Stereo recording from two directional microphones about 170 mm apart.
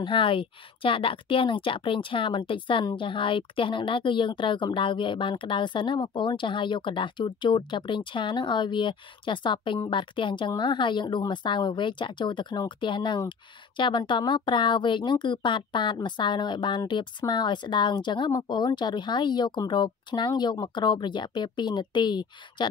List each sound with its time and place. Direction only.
0.0 s a woman's voice: 30° left (ahead or behind)